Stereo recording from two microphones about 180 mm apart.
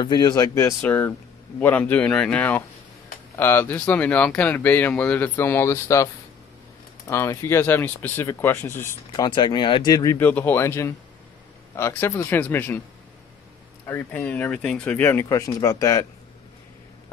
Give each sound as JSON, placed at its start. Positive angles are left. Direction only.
{"t": 0.0, "sound": "speech", "side_deg": 25}
{"t": 7.1, "sound": "speech", "side_deg": 15}
{"t": 9.1, "sound": "speech", "side_deg": 25}
{"t": 13.8, "sound": "speech", "side_deg": 15}